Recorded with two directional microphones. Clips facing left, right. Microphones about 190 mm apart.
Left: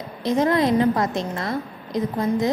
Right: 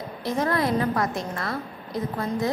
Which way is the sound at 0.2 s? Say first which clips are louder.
Left 5 dB; 20° left (ahead or behind).